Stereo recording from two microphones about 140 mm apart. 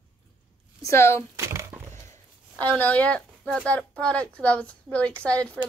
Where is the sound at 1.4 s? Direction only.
20° right (ahead or behind).